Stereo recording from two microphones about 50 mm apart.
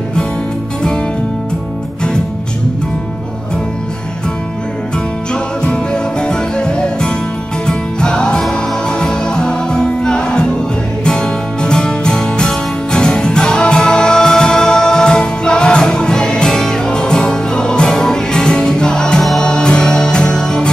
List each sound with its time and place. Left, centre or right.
5.3 s music: centre